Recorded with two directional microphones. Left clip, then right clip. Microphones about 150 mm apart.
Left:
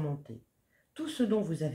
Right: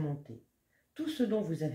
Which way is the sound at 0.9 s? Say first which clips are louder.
Left 2 dB; 30° left (ahead or behind).